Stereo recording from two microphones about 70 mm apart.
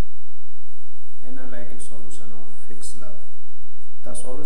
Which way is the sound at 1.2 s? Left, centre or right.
Centre.